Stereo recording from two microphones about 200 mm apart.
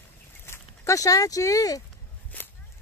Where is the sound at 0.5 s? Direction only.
15° left (ahead or behind).